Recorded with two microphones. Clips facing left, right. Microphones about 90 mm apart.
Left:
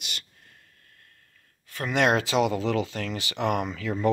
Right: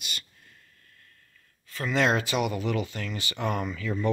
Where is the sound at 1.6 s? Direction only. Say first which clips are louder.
Left 1 dB; 55° left (ahead or behind); by 3.9 s 85° left.